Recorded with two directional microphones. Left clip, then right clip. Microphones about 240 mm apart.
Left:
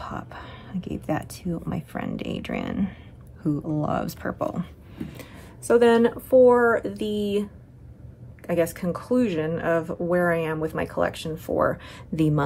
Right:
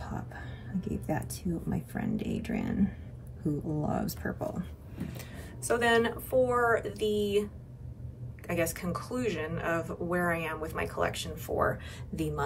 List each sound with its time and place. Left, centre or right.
0.0 s a sound: left
1.0 s speech: left
5.7 s speech: centre
8.5 s speech: centre